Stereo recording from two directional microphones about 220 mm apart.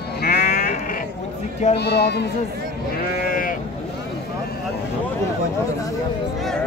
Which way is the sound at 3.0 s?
40° left (ahead or behind).